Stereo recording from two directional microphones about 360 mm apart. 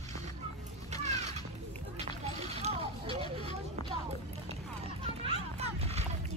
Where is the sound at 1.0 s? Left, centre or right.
Centre.